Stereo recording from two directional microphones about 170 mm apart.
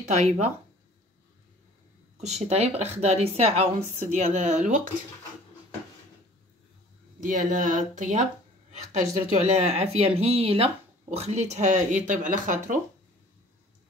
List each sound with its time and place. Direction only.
0.1 s speech: 40° right (ahead or behind)
2.1 s speech: 40° right (ahead or behind)
7.2 s speech: 50° right (ahead or behind)